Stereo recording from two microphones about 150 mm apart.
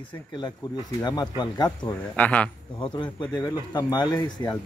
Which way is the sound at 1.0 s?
30° left (ahead or behind).